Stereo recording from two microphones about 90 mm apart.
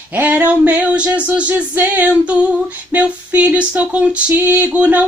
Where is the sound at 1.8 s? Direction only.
20° right (ahead or behind).